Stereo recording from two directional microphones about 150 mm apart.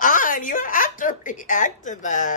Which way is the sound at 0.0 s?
65° left (ahead or behind).